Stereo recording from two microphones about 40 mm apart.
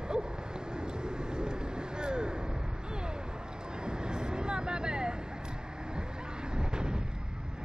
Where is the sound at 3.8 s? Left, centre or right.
Right.